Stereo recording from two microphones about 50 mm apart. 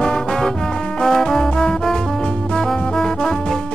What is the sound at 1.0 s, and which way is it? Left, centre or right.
Music, centre.